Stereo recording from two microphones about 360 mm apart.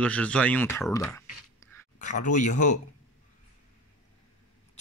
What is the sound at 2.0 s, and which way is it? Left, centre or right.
Speech, left.